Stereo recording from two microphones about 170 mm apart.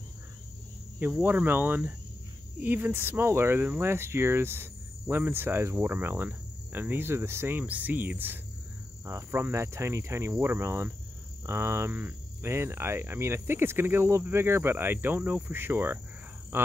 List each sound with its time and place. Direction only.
0.9 s speech: 10° right (ahead or behind)